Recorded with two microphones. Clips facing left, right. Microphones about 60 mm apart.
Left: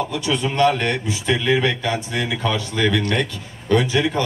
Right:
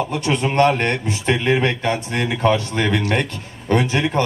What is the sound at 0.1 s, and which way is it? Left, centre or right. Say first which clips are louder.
A man's voice: right 2 dB; right.